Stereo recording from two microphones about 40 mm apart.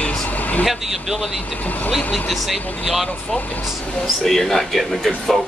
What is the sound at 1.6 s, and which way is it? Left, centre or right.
Speech, left.